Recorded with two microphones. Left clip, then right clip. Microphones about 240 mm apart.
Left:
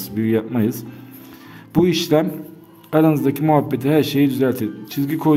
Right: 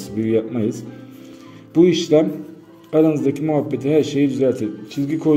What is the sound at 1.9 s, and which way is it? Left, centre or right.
A man's voice, left.